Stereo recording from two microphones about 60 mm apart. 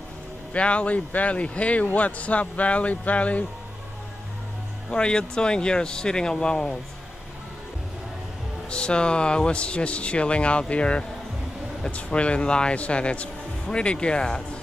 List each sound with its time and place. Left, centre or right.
0.5 s speech: left
4.9 s speech: centre
8.6 s speech: centre